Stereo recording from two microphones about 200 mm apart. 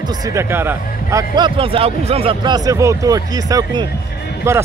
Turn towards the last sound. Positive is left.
turn(degrees=-15)  # may be behind; listen again after turning